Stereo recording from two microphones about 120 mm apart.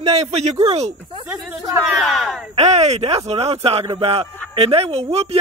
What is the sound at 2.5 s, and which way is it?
A man's voice, 65° right (ahead or behind).